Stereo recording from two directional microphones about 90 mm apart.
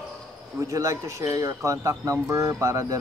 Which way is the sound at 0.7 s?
40° right (ahead or behind).